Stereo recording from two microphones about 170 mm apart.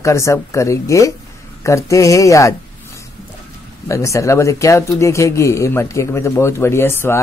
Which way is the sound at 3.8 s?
20° left (ahead or behind).